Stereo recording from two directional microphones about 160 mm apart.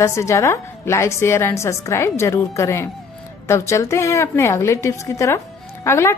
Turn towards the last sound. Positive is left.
turn(degrees=15)  # may be behind; listen again after turning